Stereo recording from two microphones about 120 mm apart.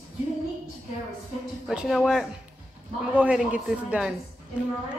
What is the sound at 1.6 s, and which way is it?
A woman's voice, 5° right (ahead or behind).